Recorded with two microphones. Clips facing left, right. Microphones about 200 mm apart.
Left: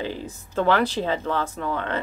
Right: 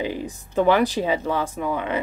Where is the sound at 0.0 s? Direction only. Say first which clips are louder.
Right 3 dB; 15° right (ahead or behind).